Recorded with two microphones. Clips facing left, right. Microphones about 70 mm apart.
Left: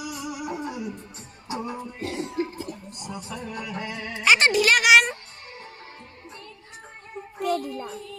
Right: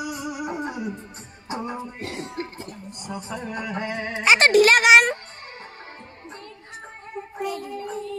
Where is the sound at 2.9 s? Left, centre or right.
Right.